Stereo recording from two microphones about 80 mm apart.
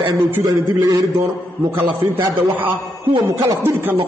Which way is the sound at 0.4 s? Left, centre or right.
Right.